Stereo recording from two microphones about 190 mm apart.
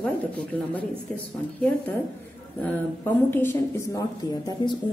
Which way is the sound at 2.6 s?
10° left (ahead or behind).